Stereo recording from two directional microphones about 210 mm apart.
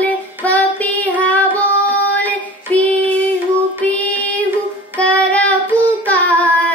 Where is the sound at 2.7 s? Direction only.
5° left (ahead or behind).